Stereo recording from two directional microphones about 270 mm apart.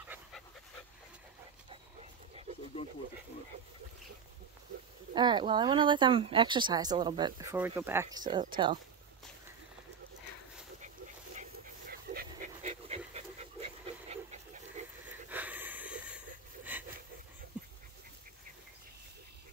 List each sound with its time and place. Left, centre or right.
0.0 s dog: centre
5.1 s speech: centre
11.9 s dog: right
15.2 s snort: centre
16.7 s a sound: centre